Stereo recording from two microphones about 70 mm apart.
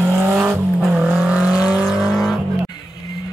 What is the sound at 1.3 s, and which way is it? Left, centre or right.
Vehicle, centre.